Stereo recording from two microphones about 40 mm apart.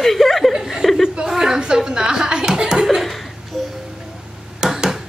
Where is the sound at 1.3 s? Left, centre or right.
Centre.